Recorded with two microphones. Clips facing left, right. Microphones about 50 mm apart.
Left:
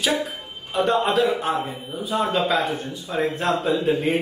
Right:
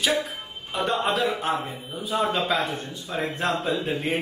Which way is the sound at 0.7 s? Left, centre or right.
Centre.